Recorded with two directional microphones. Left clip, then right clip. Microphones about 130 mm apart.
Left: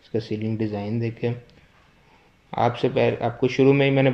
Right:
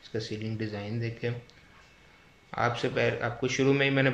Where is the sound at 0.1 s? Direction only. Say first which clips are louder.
Left 8 dB; 30° left (ahead or behind).